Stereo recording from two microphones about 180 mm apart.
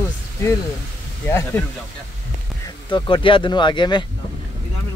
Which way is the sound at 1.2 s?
10° left (ahead or behind).